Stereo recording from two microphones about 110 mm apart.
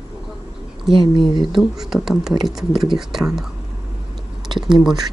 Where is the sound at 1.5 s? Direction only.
5° right (ahead or behind).